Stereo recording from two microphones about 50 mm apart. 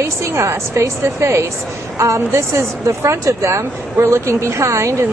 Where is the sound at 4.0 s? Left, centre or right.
Right.